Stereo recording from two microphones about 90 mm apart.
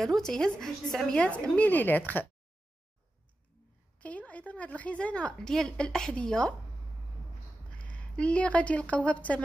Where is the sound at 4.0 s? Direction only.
15° left (ahead or behind).